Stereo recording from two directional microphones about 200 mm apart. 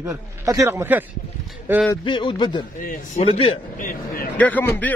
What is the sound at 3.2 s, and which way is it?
Speech, 30° left (ahead or behind).